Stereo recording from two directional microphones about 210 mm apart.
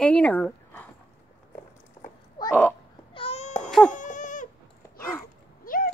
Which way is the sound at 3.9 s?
35° left (ahead or behind).